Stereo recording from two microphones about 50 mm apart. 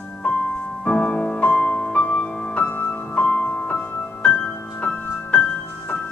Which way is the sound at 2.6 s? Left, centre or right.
Left.